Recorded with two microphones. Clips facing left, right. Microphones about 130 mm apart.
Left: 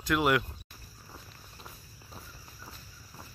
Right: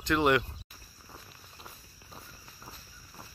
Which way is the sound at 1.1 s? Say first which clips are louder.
Even; centre (ahead or behind).